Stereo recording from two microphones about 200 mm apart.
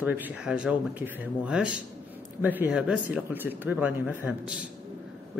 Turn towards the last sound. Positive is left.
turn(degrees=-5)  # may be behind; listen again after turning